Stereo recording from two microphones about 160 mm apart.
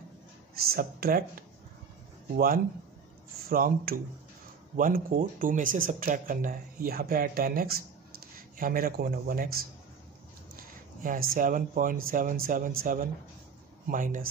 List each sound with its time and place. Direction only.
0.6 s a man's voice: 70° right (ahead or behind)
2.3 s a man's voice: 65° right (ahead or behind)